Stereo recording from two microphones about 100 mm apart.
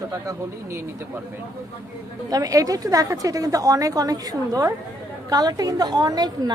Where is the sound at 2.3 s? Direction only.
35° right (ahead or behind).